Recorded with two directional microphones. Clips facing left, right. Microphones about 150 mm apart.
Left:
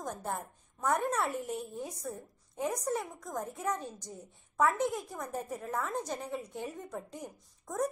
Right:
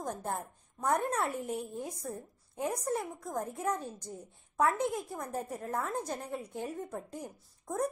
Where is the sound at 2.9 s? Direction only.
10° right (ahead or behind).